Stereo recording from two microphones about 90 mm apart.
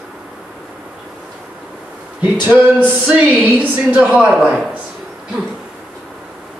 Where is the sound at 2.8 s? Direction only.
15° right (ahead or behind).